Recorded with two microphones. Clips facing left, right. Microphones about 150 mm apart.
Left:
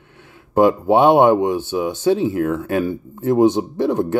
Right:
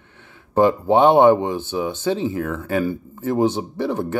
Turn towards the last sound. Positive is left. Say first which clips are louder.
# left 5 dB
turn(degrees=15)  # may be behind; listen again after turning